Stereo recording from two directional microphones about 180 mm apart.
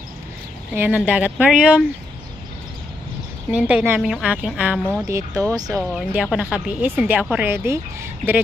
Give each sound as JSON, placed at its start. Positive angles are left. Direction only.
{"t": 0.7, "sound": "speech", "side_deg": -10}
{"t": 3.5, "sound": "speech", "side_deg": -5}
{"t": 5.0, "sound": "speech", "side_deg": -15}
{"t": 5.9, "sound": "speech", "side_deg": -5}